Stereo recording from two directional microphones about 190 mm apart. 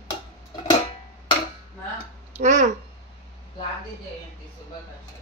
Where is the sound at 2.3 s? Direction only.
40° right (ahead or behind).